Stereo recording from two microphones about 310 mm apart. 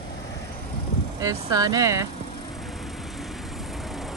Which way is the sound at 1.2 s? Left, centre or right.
Centre.